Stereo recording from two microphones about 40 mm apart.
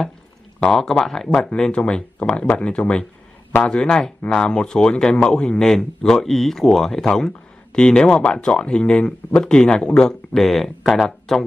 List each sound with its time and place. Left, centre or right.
0.7 s speech: centre
1.5 s speech: left
7.2 s speech: centre
10.0 s speech: centre